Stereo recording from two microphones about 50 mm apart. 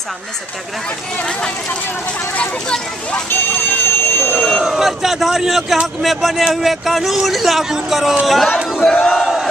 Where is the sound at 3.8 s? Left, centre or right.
Left.